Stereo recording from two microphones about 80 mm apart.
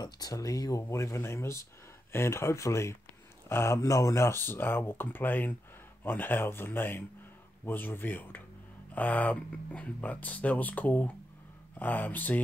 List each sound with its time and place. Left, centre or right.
0.0 s speech: left